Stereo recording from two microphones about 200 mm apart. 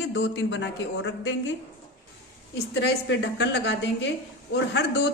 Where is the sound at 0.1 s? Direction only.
65° left (ahead or behind).